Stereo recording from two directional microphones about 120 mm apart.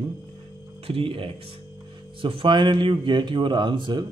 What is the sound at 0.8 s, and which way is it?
A man's voice, 50° right (ahead or behind).